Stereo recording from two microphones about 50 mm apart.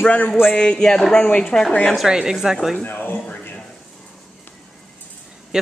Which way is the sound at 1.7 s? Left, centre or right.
Left.